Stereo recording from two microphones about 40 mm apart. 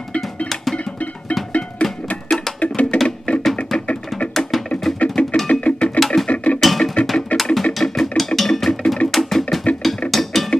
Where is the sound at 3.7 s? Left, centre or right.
Centre.